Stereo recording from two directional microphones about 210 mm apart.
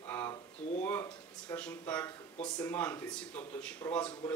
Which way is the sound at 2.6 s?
10° left (ahead or behind).